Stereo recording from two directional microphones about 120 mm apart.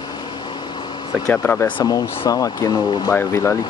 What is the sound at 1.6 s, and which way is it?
Speech, 30° left (ahead or behind).